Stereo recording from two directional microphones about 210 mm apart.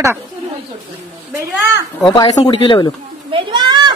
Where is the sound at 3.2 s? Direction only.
25° right (ahead or behind).